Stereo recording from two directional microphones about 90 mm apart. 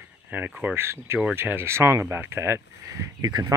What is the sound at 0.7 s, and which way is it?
Speech, 25° right (ahead or behind).